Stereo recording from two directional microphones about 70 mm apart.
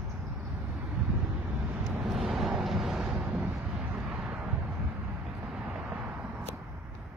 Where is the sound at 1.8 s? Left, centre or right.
Centre.